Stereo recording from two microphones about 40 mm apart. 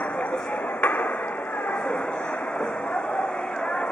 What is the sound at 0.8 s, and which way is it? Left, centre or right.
Chop, left.